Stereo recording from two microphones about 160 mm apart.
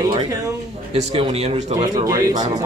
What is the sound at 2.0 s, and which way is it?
Speech, 20° right (ahead or behind).